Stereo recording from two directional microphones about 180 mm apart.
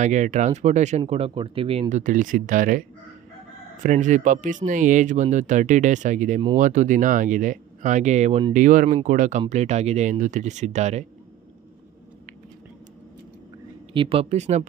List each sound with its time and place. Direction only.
0.0 s speech: 40° right (ahead or behind)
3.8 s speech: 45° right (ahead or behind)
13.9 s speech: 30° right (ahead or behind)